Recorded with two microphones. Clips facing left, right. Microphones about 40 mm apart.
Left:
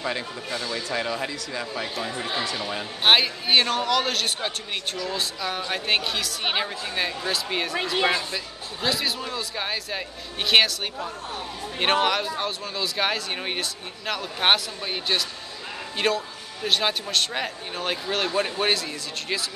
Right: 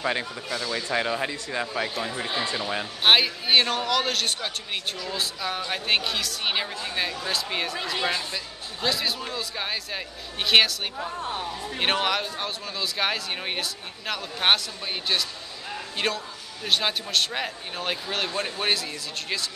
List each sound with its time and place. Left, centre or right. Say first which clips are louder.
0.0 s speech: right 2 dB; centre
1.7 s speech: right 1 dB; centre
3.0 s speech: left 1 dB; centre
8.8 s speech: left 1 dB; centre